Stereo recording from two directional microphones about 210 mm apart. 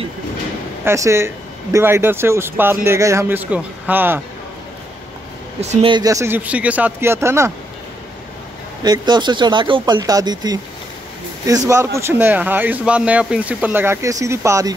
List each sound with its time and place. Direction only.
0.8 s speech: 15° right (ahead or behind)
5.6 s speech: 30° right (ahead or behind); by 7.5 s 15° right (ahead or behind)
8.8 s speech: 20° right (ahead or behind)